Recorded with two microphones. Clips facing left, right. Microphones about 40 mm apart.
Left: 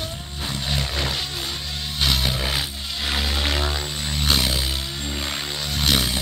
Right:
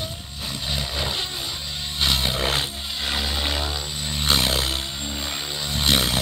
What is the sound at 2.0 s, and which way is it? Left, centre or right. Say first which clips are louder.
Roaring cats: even; centre.